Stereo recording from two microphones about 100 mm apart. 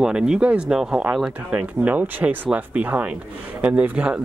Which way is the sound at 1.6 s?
15° right (ahead or behind).